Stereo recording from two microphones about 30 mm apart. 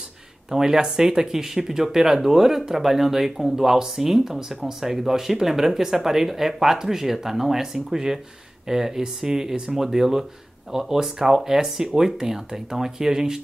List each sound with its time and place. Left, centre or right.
0.5 s speech: right